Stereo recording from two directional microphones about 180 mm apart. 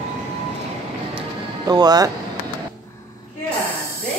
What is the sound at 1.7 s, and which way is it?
Speech, 20° right (ahead or behind).